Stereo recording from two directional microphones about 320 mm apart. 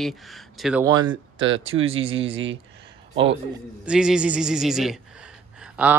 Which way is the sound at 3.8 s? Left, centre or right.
Centre.